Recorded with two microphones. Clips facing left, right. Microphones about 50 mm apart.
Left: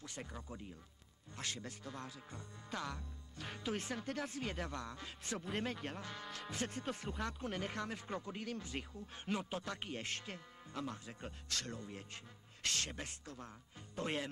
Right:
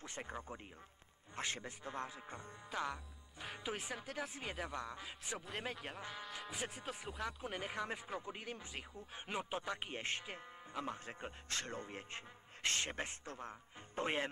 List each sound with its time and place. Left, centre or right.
0.0 s speech: right
1.6 s speech: right
12.6 s speech: right